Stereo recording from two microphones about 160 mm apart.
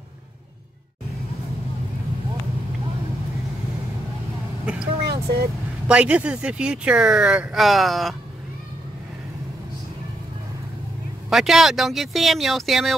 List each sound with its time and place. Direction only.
4.7 s vehicle: 5° right (ahead or behind)
5.1 s speech: 85° right
5.9 s speech: 10° right (ahead or behind)
11.2 s speech: centre (ahead or behind)